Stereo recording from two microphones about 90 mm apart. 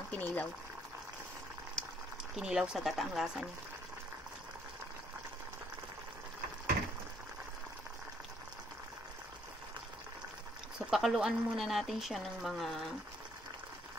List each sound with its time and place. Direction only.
0.1 s speech: 20° left (ahead or behind)
2.3 s speech: 10° right (ahead or behind)
10.9 s speech: 5° right (ahead or behind)